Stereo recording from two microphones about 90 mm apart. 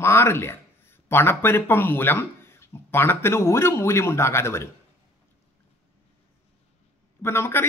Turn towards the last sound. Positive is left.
turn(degrees=25)  # may be behind; listen again after turning